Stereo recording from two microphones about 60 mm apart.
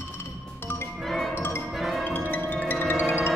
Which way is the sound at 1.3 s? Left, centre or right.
Left.